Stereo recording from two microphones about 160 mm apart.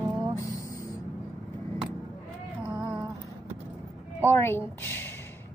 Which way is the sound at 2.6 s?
15° right (ahead or behind).